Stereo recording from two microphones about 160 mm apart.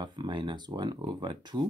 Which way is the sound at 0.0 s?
30° right (ahead or behind).